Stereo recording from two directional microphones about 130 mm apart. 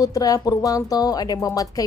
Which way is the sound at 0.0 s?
30° left (ahead or behind).